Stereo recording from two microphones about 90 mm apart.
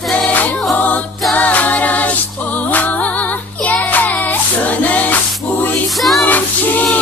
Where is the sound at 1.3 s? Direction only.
15° left (ahead or behind).